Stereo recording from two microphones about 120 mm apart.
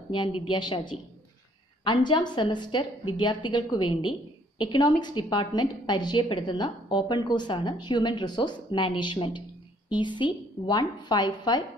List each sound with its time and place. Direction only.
0.1 s a woman's voice: 40° left (ahead or behind)